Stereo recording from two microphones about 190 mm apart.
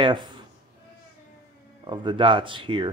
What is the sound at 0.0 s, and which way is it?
Speech, 25° right (ahead or behind).